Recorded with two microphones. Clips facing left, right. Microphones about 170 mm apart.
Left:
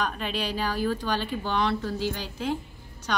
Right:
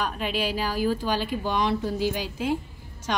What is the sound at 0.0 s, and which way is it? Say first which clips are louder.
Speech: right 2 dB; 10° right (ahead or behind).